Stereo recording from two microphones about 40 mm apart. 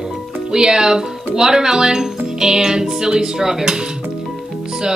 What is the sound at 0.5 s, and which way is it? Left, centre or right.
Speech, centre.